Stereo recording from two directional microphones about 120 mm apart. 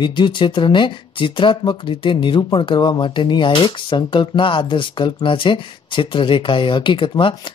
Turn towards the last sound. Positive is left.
turn(degrees=45)  # may be behind; listen again after turning